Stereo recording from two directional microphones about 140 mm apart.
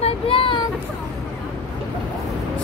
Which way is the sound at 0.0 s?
40° left (ahead or behind).